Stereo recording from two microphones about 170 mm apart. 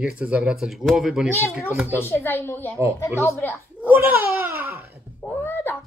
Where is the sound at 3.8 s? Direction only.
10° right (ahead or behind).